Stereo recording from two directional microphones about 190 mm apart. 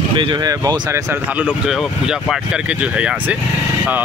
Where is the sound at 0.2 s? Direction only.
20° right (ahead or behind).